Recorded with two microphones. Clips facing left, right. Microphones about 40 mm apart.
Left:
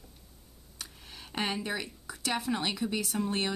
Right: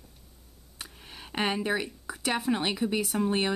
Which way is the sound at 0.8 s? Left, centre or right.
Centre.